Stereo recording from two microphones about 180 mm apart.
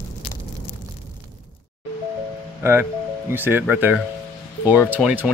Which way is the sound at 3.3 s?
10° right (ahead or behind).